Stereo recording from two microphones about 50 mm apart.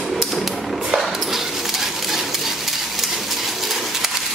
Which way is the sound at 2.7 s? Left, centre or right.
Centre.